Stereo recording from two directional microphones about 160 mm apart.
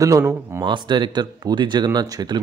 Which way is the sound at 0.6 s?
30° right (ahead or behind).